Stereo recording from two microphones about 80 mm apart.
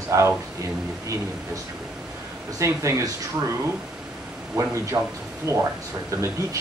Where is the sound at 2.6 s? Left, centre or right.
Right.